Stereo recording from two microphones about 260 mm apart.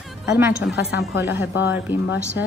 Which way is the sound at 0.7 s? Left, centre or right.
Left.